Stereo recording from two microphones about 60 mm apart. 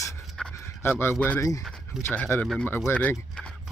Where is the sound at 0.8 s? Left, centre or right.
Left.